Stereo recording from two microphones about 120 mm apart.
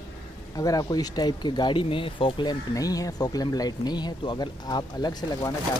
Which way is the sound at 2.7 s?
30° left (ahead or behind).